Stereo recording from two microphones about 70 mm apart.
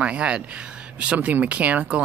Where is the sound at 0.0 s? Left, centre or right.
Centre.